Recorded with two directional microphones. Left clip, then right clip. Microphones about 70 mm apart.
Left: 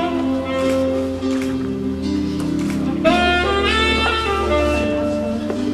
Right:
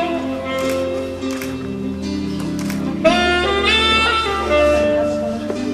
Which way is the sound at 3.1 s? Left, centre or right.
Right.